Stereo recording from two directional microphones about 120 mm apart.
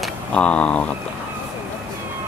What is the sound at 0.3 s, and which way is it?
Speech, 10° left (ahead or behind).